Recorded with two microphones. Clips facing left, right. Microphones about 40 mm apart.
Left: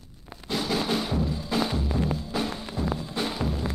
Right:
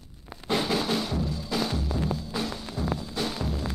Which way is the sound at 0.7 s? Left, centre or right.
Centre.